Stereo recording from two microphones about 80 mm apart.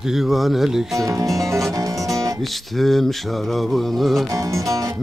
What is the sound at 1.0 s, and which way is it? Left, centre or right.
Speech, right.